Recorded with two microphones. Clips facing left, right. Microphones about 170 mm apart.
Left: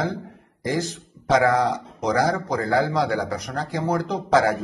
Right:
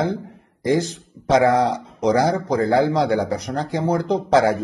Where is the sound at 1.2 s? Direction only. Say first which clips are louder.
Right 3 dB; 25° right (ahead or behind).